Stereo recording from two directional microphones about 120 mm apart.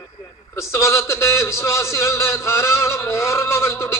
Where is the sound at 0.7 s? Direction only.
25° left (ahead or behind).